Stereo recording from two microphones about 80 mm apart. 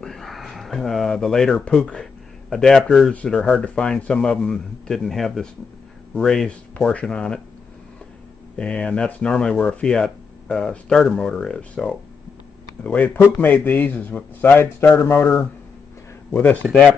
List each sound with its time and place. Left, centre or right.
0.0 s speech: centre
8.5 s speech: centre
12.8 s a man's voice: centre